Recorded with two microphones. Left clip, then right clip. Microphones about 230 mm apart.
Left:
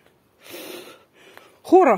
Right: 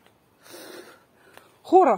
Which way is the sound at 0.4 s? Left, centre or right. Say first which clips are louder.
Left 5 dB; left.